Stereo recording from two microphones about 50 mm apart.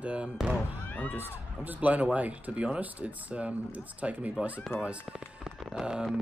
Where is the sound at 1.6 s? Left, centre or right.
Right.